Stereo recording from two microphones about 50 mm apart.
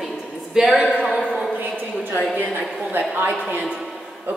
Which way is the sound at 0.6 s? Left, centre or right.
Centre.